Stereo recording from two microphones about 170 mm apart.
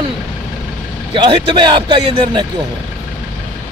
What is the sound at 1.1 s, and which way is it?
Speech, 30° right (ahead or behind).